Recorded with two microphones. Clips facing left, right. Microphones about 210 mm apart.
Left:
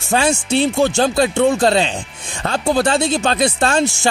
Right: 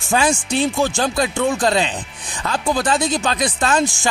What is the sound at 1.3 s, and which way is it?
Speech, 40° left (ahead or behind).